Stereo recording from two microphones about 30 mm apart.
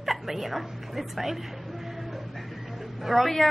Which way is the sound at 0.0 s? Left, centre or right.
Centre.